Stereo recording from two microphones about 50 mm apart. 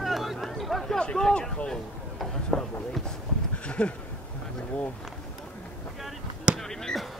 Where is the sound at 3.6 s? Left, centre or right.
Left.